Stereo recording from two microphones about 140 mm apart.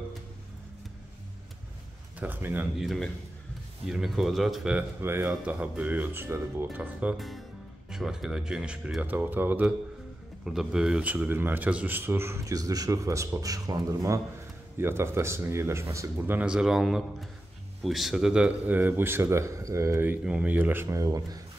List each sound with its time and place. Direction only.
2.1 s speech: 15° right (ahead or behind)
2.8 s speech: centre (ahead or behind)
5.0 s speech: 15° right (ahead or behind)